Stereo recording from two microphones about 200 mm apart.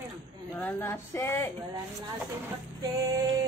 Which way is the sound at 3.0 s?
15° right (ahead or behind).